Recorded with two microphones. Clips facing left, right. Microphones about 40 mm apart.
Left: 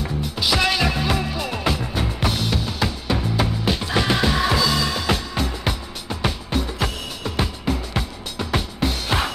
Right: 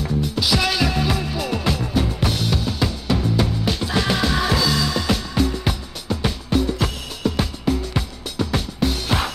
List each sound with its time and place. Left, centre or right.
0.0 s music: centre